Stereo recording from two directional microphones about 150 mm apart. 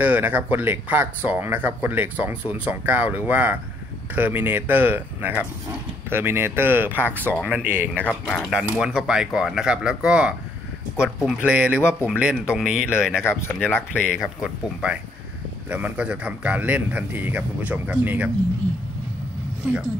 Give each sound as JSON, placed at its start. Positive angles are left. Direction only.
{"t": 0.0, "sound": "speech", "side_deg": -10}
{"t": 8.0, "sound": "speech", "side_deg": 5}
{"t": 13.2, "sound": "speech", "side_deg": 15}
{"t": 13.9, "sound": "speech", "side_deg": -5}